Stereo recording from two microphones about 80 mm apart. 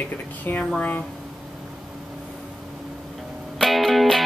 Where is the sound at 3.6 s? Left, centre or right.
Centre.